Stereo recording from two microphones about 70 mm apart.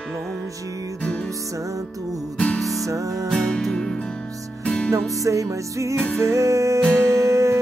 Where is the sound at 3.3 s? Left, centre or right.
Centre.